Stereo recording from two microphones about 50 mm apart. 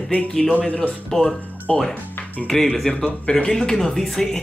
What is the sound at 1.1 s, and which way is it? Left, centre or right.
Speech, centre.